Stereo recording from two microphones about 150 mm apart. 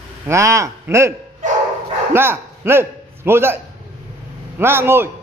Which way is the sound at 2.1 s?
15° right (ahead or behind).